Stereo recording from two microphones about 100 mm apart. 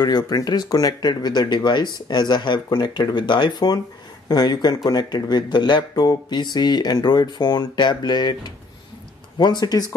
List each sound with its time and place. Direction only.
0.0 s speech: 40° left (ahead or behind)